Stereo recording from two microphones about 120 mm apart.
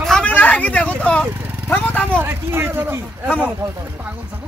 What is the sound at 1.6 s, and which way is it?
Vehicle, 15° left (ahead or behind).